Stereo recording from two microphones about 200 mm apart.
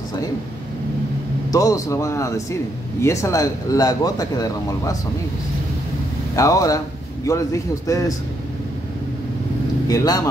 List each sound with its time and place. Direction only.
1.5 s speech: 15° left (ahead or behind)
6.3 s speech: 15° left (ahead or behind)
9.8 s speech: 20° left (ahead or behind)